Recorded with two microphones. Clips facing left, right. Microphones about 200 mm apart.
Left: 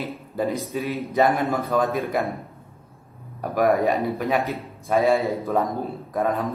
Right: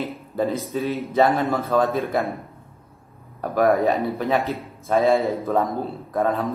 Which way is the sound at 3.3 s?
15° left (ahead or behind).